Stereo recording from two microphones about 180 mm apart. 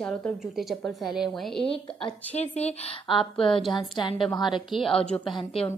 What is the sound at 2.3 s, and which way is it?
A woman's voice, 35° left (ahead or behind).